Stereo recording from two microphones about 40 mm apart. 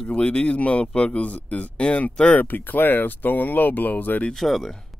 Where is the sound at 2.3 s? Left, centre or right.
Left.